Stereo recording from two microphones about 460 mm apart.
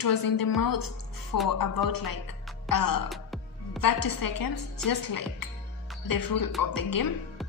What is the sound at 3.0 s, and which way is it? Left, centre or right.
Music, centre.